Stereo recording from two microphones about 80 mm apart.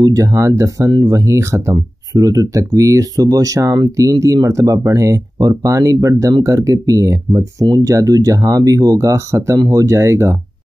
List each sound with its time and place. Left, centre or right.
0.0 s speech: right